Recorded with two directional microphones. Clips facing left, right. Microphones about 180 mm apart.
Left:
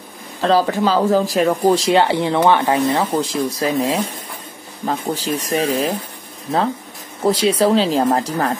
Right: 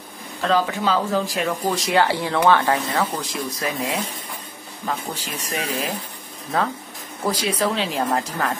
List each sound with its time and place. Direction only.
0.4 s speech: 35° left (ahead or behind)
7.2 s speech: 25° left (ahead or behind)